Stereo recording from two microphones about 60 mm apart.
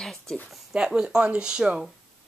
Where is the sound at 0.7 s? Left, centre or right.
Centre.